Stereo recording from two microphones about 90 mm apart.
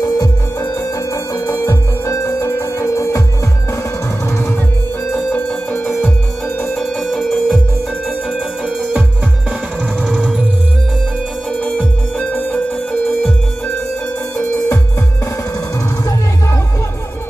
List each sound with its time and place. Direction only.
0.0 s music: 40° left (ahead or behind)
5.1 s music: 20° left (ahead or behind)
6.7 s music: centre (ahead or behind)
10.0 s music: centre (ahead or behind)
11.6 s music: 10° left (ahead or behind)